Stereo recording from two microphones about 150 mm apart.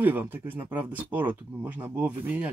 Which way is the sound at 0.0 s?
10° right (ahead or behind).